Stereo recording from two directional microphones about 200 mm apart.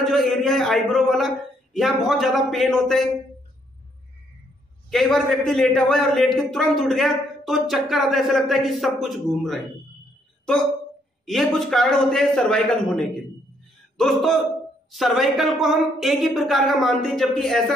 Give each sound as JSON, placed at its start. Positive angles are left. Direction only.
{"t": 0.0, "sound": "a man's voice", "side_deg": 0}
{"t": 4.9, "sound": "a man's voice", "side_deg": 0}
{"t": 11.2, "sound": "a man's voice", "side_deg": 0}